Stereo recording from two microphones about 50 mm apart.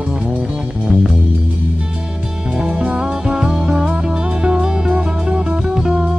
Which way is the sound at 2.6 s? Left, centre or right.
Centre.